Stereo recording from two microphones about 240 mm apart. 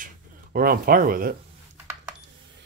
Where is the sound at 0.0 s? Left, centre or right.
Right.